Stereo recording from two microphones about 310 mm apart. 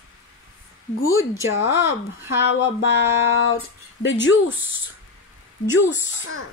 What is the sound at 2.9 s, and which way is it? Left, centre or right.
Speech, left.